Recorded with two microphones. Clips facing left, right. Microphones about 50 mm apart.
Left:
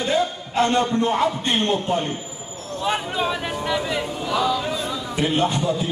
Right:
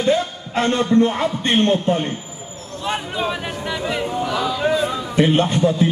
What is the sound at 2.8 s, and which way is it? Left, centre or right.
Speech, centre.